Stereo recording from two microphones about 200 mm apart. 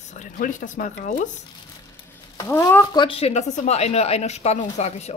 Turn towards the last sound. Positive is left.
turn(degrees=35)  # may be behind; listen again after turning